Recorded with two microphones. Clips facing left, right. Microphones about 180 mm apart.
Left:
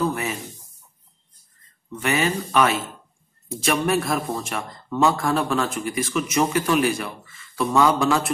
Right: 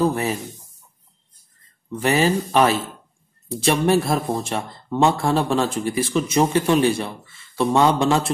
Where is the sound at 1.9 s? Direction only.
35° right (ahead or behind).